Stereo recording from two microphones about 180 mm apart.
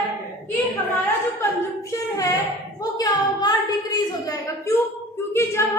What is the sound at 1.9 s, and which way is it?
Child singing, 20° left (ahead or behind).